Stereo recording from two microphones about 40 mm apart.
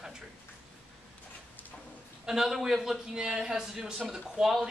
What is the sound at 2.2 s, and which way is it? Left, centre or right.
Speech, centre.